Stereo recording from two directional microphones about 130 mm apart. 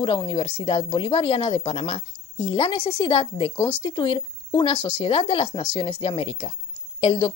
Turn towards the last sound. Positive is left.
turn(degrees=40)  # may be behind; listen again after turning